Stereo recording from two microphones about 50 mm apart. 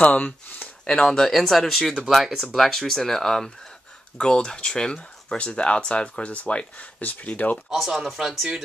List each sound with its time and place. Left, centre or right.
0.0 s speech: left
1.0 s speech: centre
6.2 s speech: left
7.7 s speech: centre